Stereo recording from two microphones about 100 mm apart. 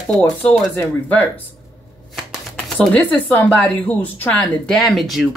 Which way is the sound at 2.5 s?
10° left (ahead or behind).